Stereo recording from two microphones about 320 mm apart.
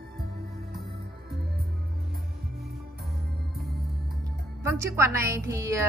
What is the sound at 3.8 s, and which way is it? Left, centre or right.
Music, right.